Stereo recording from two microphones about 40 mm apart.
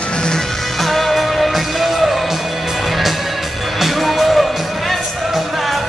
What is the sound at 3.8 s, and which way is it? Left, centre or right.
Music, centre.